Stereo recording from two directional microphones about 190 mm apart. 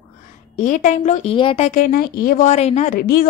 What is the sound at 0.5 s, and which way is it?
A woman's voice, 40° left (ahead or behind).